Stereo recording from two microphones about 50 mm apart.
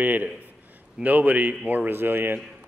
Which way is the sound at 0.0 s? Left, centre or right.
Right.